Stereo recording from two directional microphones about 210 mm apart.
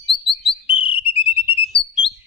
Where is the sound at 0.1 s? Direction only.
25° left (ahead or behind).